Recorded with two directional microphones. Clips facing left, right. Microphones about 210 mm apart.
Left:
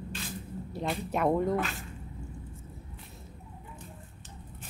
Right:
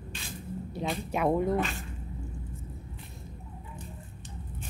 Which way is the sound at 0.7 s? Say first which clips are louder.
Even; centre (ahead or behind).